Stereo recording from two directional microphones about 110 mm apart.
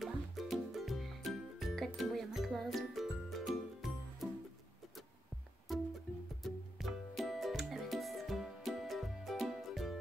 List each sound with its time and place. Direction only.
0.0 s music: centre (ahead or behind)
5.7 s music: centre (ahead or behind)